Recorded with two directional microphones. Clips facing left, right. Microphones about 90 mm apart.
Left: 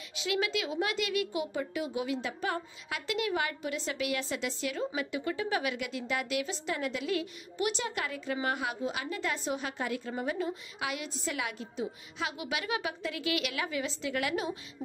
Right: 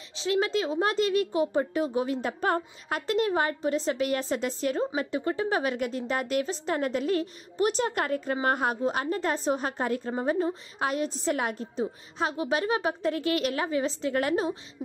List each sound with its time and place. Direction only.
0.1 s a woman's voice: 35° right (ahead or behind)